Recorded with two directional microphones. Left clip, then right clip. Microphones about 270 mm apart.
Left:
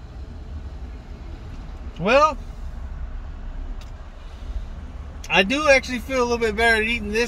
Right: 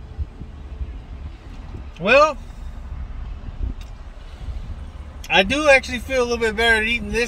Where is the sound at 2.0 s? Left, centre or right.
Right.